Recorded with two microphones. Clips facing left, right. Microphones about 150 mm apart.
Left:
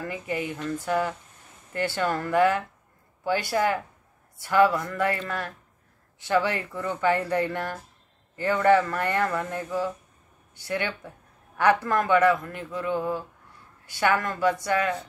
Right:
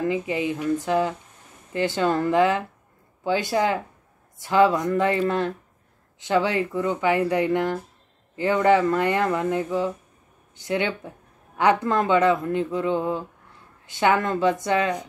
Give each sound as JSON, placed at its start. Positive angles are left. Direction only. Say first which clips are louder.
{"t": 0.0, "sound": "speech", "louder": "right 6 dB", "side_deg": -15}